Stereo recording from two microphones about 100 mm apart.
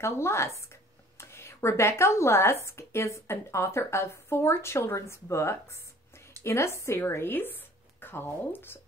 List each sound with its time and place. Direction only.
0.0 s speech: 25° left (ahead or behind)